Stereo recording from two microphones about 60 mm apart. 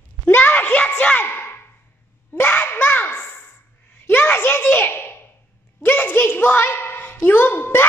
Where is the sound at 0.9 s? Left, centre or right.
Left.